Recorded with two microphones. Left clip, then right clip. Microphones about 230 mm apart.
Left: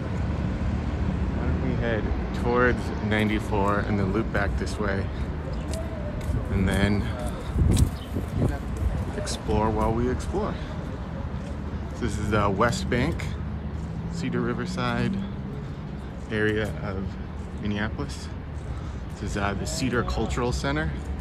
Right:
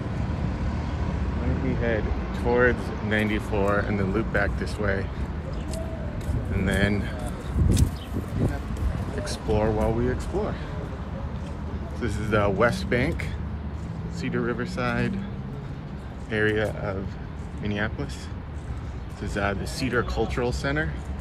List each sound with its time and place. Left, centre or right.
2.5 s speech: left
6.5 s speech: centre
9.6 s speech: centre
12.0 s speech: centre
14.2 s speech: centre
16.3 s speech: centre
19.3 s speech: centre